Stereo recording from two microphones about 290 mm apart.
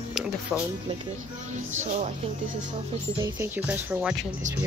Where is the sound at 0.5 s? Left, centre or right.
Centre.